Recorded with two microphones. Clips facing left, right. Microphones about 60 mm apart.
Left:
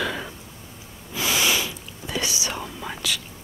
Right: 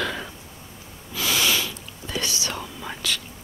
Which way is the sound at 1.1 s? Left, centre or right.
Centre.